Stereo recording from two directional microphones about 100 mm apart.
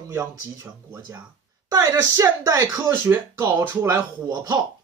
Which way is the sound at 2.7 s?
20° right (ahead or behind).